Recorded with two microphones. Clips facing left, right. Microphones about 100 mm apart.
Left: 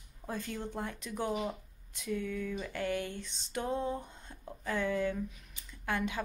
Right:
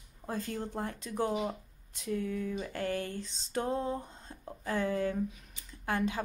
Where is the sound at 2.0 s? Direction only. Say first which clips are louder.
Right 2 dB; 35° right (ahead or behind).